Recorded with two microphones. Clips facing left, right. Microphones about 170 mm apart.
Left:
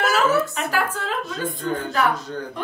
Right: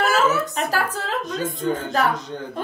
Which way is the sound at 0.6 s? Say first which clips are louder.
Right 1 dB; 35° right (ahead or behind).